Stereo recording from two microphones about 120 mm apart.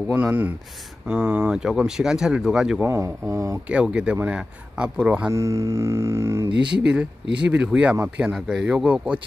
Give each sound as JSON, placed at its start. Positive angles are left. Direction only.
{"t": 0.1, "sound": "speech", "side_deg": -15}
{"t": 2.8, "sound": "speech", "side_deg": -20}
{"t": 3.6, "sound": "speech", "side_deg": -10}
{"t": 5.3, "sound": "speech", "side_deg": -25}
{"t": 6.6, "sound": "speech", "side_deg": -10}